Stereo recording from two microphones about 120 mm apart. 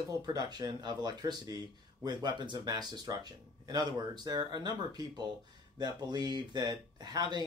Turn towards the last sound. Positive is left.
turn(degrees=-35)  # may be behind; listen again after turning